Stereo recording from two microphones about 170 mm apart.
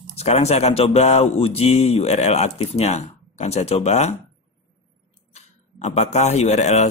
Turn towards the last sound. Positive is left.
turn(degrees=40)  # may be behind; listen again after turning